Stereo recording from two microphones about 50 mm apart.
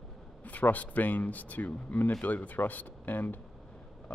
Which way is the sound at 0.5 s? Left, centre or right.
Left.